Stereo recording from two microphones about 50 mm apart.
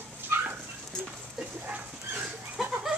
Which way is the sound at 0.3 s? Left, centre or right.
Right.